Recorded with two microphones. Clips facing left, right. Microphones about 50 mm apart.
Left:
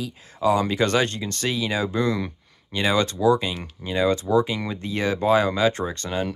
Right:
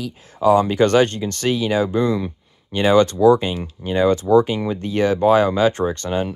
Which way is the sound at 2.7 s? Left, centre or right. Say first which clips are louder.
Right 7 dB; right.